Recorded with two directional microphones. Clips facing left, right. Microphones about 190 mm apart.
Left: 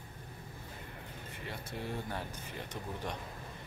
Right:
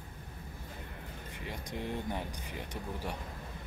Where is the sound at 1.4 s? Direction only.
15° right (ahead or behind).